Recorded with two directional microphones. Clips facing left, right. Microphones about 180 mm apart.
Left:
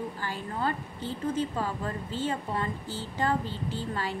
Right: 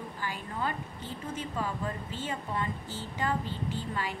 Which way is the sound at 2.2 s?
35° left (ahead or behind).